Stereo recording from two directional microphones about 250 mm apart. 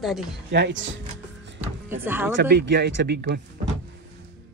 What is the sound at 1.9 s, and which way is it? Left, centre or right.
Speech, centre.